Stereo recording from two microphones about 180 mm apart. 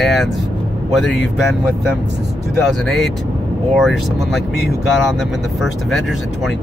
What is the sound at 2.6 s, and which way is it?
Speech, centre (ahead or behind).